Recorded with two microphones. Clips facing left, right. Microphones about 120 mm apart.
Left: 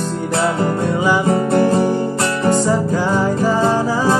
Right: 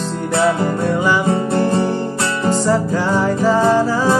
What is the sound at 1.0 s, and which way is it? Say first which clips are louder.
Music: left 2 dB; 15° left (ahead or behind).